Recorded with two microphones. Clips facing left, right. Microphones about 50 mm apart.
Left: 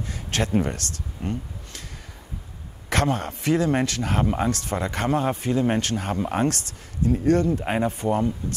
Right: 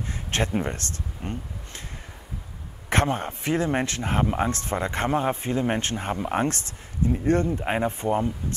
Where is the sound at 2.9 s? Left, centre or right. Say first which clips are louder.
Even; right.